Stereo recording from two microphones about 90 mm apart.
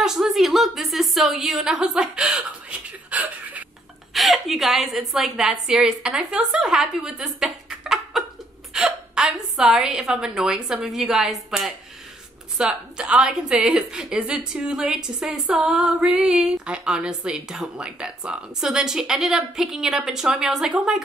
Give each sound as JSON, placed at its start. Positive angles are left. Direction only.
{"t": 0.0, "sound": "a woman's voice", "side_deg": -5}
{"t": 4.1, "sound": "a woman's voice", "side_deg": 0}